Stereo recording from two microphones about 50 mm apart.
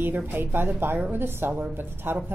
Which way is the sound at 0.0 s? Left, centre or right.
Right.